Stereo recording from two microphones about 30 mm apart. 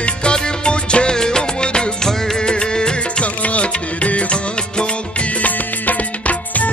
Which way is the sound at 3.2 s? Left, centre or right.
Left.